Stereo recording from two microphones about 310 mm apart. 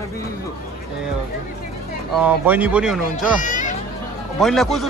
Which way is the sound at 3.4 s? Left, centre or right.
Left.